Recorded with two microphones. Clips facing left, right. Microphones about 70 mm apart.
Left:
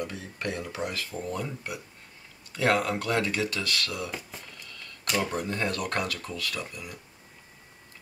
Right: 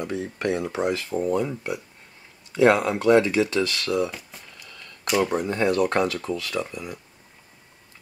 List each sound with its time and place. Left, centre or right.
0.0 s speech: right
5.0 s speech: centre
5.3 s speech: right